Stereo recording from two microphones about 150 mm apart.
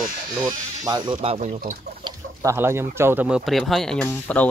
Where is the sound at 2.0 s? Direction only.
30° right (ahead or behind).